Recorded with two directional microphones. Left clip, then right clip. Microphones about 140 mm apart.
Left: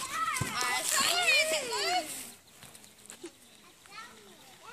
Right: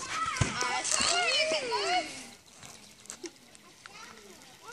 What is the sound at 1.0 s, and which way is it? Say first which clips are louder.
Children playing: left 1 dB; 5° right (ahead or behind).